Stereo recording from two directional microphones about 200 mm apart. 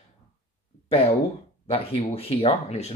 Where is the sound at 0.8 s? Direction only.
30° left (ahead or behind).